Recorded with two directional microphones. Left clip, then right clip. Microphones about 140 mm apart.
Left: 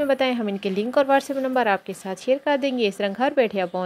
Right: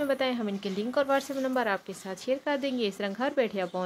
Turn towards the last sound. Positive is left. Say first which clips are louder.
# left 7 dB
turn(degrees=35)  # may be behind; listen again after turning